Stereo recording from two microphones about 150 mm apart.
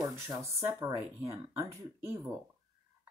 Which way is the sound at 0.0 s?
20° right (ahead or behind).